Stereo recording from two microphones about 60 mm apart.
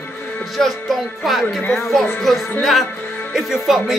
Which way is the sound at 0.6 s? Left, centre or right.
Centre.